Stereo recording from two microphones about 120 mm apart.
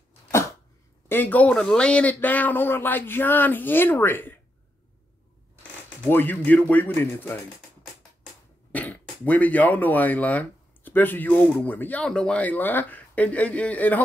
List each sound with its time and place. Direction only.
1.0 s speech: 15° left (ahead or behind)
6.0 s speech: 15° left (ahead or behind)
8.7 s speech: 15° left (ahead or behind)